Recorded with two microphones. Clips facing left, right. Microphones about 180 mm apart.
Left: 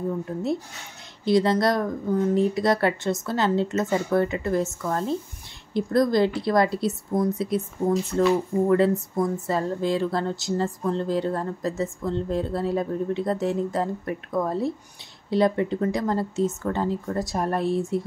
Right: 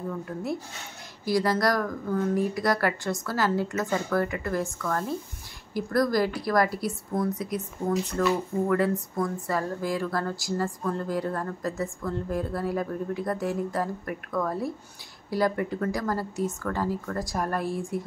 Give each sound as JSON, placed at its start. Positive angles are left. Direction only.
{"t": 0.2, "sound": "speech", "side_deg": 25}
{"t": 8.6, "sound": "speech", "side_deg": 25}